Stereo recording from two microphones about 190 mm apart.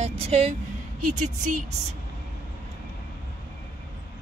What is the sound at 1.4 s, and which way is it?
Speech, 45° right (ahead or behind).